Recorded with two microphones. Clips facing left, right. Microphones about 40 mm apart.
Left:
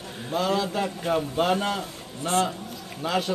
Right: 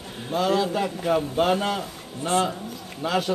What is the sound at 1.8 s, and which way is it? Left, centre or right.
Speech, right.